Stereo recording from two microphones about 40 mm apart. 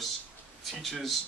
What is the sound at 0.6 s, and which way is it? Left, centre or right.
Speech, centre.